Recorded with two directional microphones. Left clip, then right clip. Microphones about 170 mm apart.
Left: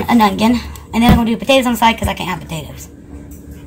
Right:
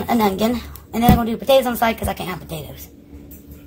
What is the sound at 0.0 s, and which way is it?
A woman's voice, 35° right (ahead or behind).